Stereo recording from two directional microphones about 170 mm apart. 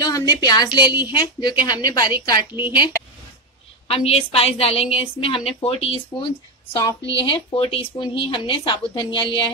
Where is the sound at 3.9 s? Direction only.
35° left (ahead or behind).